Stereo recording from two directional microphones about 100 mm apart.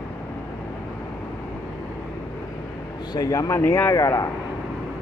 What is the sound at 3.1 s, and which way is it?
A man's voice, 35° left (ahead or behind).